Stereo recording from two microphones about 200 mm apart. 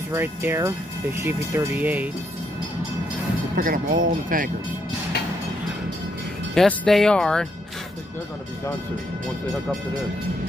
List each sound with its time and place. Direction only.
0.1 s speech: 10° right (ahead or behind)
3.5 s speech: 45° right (ahead or behind)
6.5 s speech: centre (ahead or behind)